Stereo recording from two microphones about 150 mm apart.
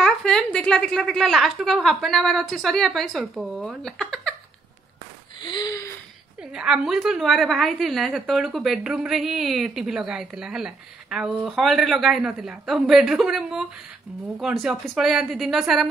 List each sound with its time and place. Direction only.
0.0 s a woman's voice: 5° left (ahead or behind)
5.4 s a sound: 30° left (ahead or behind)
6.5 s a woman's voice: 5° right (ahead or behind)